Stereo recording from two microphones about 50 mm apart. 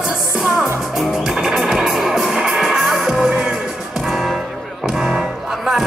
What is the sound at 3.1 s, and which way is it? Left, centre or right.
Music, centre.